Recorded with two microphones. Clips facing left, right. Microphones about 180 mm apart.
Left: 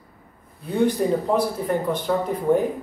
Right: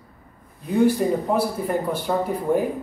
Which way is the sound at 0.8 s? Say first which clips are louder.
Left 1 dB; 10° right (ahead or behind).